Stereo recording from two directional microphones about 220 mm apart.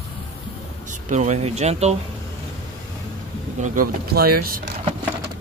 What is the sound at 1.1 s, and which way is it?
Speech, 30° right (ahead or behind).